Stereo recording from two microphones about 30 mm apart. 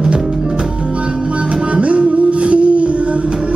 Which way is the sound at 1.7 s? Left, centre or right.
Right.